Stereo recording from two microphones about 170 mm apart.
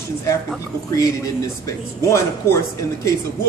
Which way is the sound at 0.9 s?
20° left (ahead or behind).